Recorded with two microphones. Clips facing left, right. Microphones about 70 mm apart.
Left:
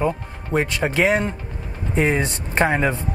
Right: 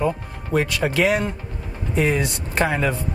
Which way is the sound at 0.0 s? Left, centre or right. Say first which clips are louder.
Even; left.